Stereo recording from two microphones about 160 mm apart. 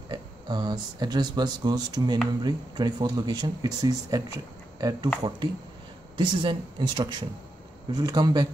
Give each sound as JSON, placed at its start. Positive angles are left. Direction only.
{"t": 0.1, "sound": "speech", "side_deg": -25}
{"t": 6.1, "sound": "speech", "side_deg": -30}